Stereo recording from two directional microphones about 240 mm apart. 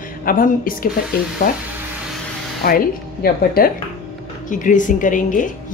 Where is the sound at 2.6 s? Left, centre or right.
Left.